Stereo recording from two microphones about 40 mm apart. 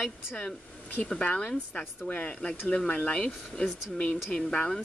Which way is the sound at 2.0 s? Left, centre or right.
Left.